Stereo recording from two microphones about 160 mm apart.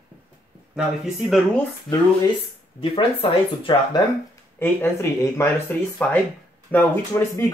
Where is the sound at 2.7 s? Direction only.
40° left (ahead or behind).